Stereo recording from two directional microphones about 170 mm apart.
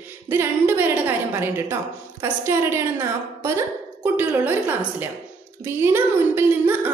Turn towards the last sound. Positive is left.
turn(degrees=-15)  # may be behind; listen again after turning